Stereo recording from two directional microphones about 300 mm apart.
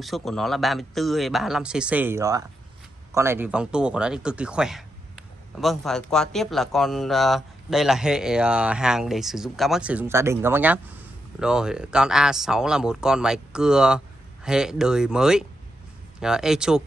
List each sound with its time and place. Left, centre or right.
0.0 s speech: centre